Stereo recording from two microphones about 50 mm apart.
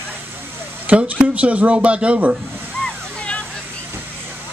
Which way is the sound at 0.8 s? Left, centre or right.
Right.